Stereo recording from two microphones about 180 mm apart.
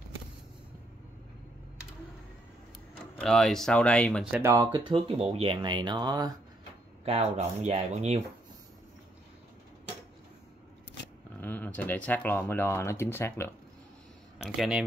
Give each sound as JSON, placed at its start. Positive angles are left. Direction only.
{"t": 3.2, "sound": "speech", "side_deg": 5}
{"t": 4.2, "sound": "speech", "side_deg": -10}
{"t": 4.7, "sound": "speech", "side_deg": -30}
{"t": 7.1, "sound": "speech", "side_deg": -35}
{"t": 11.4, "sound": "speech", "side_deg": 10}
{"t": 14.4, "sound": "speech", "side_deg": 0}